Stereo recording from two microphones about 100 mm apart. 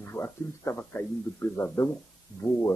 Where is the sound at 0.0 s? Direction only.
25° left (ahead or behind).